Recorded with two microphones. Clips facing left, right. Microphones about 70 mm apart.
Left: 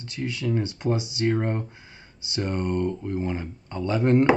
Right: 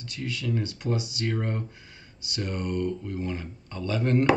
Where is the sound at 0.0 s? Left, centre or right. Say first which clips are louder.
Left 4 dB; left.